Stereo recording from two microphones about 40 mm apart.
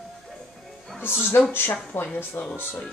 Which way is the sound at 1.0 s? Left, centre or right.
Left.